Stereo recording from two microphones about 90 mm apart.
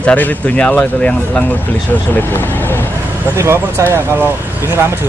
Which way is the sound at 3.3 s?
30° right (ahead or behind).